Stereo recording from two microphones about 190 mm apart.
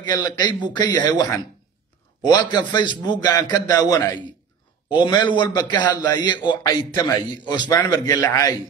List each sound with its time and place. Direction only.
0.0 s a man's voice: 20° left (ahead or behind)
2.5 s a man's voice: 25° left (ahead or behind)